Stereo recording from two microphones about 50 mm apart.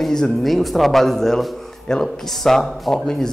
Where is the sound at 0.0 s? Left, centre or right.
Centre.